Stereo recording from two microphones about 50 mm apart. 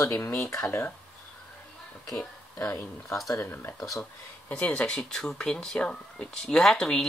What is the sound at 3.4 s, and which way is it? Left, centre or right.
Speech, left.